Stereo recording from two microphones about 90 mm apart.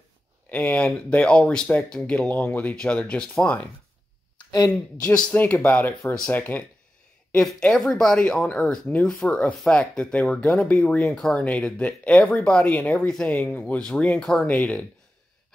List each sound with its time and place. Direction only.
0.5 s speech: 15° left (ahead or behind)
4.4 s a sound: 50° left (ahead or behind)
5.0 s speech: 10° left (ahead or behind)
7.4 s speech: centre (ahead or behind)